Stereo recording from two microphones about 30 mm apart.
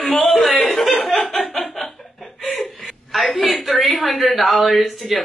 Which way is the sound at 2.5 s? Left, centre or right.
Centre.